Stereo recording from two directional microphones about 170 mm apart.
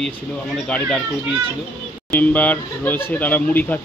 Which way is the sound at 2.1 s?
10° left (ahead or behind).